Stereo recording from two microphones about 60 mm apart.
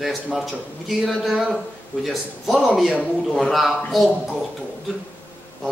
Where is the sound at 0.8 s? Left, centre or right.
Centre.